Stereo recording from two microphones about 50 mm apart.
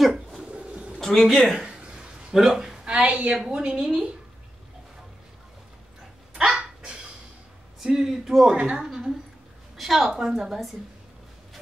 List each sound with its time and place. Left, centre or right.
0.5 s pigeon: right
1.0 s a woman's voice: centre
1.7 s a sound: centre
2.4 s speech: centre
3.0 s a woman's voice: right
3.3 s a woman's voice: centre
6.3 s dog: centre
7.8 s speech: centre
8.5 s a woman's voice: right
8.8 s a sound: centre
9.8 s a woman's voice: centre